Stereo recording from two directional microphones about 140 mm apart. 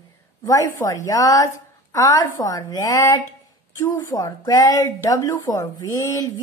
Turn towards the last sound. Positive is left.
turn(degrees=20)  # may be behind; listen again after turning